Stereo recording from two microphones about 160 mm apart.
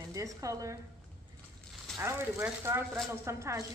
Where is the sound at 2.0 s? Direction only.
15° right (ahead or behind).